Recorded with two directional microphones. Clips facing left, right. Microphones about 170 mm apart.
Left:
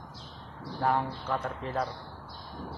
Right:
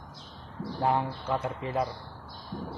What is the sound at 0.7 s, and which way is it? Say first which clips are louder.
Speech: right 1 dB; 20° right (ahead or behind).